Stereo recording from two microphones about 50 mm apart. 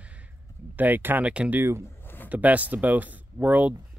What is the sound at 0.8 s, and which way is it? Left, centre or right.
Speech, right.